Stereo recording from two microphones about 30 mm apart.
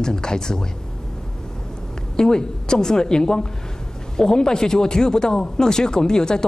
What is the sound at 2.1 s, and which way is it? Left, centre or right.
Speech, left.